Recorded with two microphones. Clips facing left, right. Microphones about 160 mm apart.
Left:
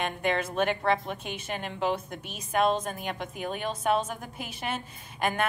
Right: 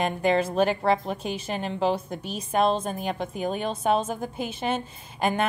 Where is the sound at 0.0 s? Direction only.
30° right (ahead or behind).